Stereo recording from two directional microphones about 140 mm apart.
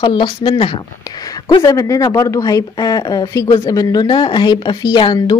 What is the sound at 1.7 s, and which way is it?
Speech, 25° left (ahead or behind).